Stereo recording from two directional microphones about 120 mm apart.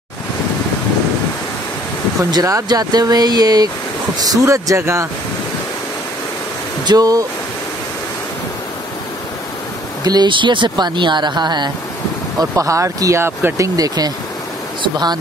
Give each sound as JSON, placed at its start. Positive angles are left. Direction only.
{"t": 2.3, "sound": "speech", "side_deg": -30}
{"t": 6.9, "sound": "speech", "side_deg": -30}
{"t": 10.0, "sound": "speech", "side_deg": -35}
{"t": 12.4, "sound": "speech", "side_deg": -25}
{"t": 13.7, "sound": "speech", "side_deg": -30}